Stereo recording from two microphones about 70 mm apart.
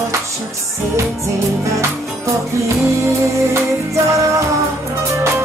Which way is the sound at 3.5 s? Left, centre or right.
Right.